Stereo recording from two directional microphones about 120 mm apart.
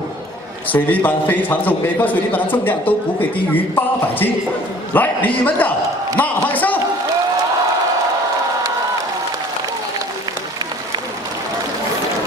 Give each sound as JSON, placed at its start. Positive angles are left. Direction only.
{"t": 0.7, "sound": "a man's voice", "side_deg": 15}